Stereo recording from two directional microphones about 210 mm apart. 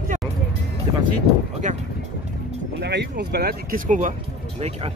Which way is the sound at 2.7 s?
55° right (ahead or behind).